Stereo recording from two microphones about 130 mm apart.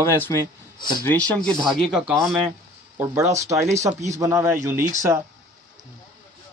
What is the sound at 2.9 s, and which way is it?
Speech, 25° right (ahead or behind).